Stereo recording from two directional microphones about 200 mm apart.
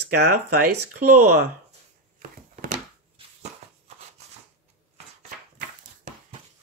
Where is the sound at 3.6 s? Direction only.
35° right (ahead or behind).